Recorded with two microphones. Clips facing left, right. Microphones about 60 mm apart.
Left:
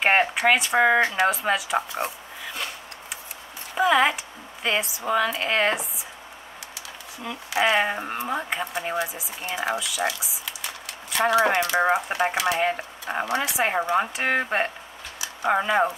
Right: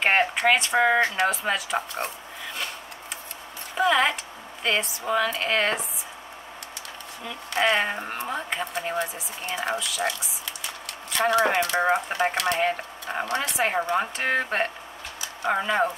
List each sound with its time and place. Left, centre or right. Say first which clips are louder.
0.0 s speech: left 1 dB; centre
3.7 s a woman's voice: left 2 dB; centre
7.2 s speech: left 1 dB; centre